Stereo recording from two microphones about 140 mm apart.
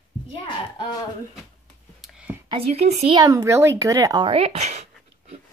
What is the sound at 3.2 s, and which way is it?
Speech, 25° right (ahead or behind).